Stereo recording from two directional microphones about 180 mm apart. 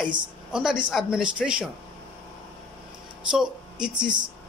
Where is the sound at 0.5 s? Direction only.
5° right (ahead or behind).